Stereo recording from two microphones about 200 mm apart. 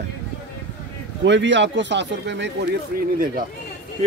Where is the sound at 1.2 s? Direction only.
65° right (ahead or behind).